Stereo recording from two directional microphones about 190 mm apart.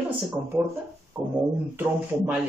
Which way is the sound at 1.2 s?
20° right (ahead or behind).